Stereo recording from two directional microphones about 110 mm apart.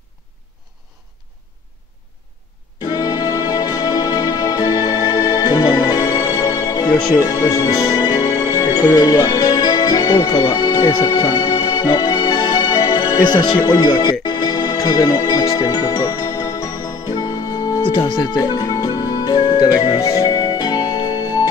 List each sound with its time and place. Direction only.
2.8 s music: 35° left (ahead or behind)
17.7 s speech: 40° left (ahead or behind)
18.4 s music: 35° left (ahead or behind)